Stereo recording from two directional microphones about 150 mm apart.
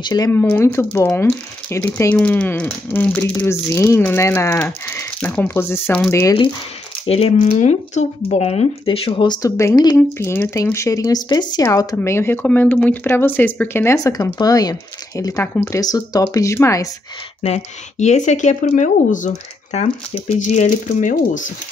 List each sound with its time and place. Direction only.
0.0 s speech: 30° left (ahead or behind)
0.3 s speech: 15° left (ahead or behind)
6.2 s speech: 35° left (ahead or behind)
7.5 s speech: 50° left (ahead or behind); by 15.8 s 10° left (ahead or behind)
15.8 s speech: 25° left (ahead or behind)
17.4 s speech: 45° left (ahead or behind)
19.8 s speech: 45° left (ahead or behind); by 21.5 s 60° left (ahead or behind)